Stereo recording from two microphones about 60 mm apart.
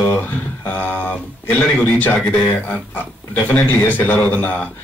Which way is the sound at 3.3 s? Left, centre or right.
Left.